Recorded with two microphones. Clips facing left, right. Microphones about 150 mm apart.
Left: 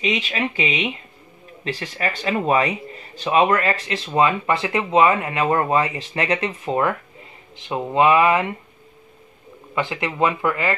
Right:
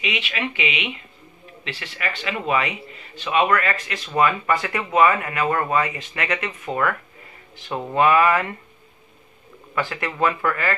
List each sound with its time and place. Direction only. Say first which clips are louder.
0.0 s speech: left 4 dB; 35° left (ahead or behind); by 8.5 s 20° left (ahead or behind)
9.8 s speech: left 2 dB; 20° left (ahead or behind)